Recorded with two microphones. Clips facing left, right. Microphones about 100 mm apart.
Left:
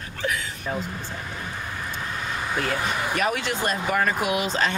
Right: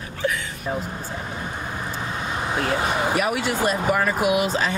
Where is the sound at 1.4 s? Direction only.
25° right (ahead or behind).